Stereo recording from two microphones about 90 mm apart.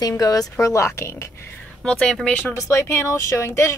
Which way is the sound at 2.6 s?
35° left (ahead or behind).